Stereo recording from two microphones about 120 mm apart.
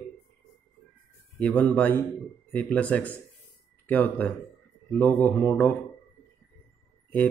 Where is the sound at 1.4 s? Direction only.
10° left (ahead or behind).